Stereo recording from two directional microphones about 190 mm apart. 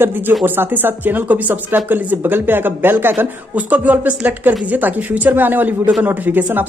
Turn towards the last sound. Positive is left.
turn(degrees=-10)  # may be behind; listen again after turning